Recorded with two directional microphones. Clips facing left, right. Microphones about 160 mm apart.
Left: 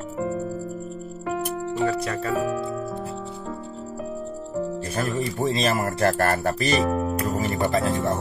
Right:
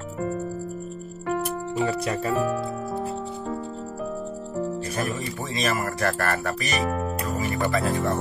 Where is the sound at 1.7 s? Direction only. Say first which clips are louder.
Left 1 dB; 15° right (ahead or behind).